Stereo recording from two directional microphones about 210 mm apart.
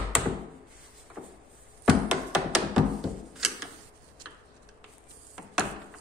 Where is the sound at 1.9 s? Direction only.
Centre (ahead or behind).